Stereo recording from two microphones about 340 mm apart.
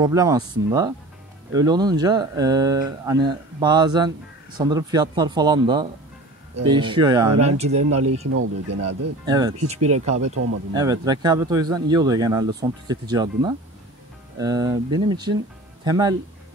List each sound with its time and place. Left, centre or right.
0.0 s speech: centre
8.4 s speech: right
9.2 s speech: centre
10.3 s speech: right
10.7 s speech: centre